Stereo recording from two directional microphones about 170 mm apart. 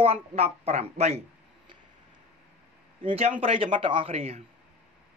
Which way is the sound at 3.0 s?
35° right (ahead or behind).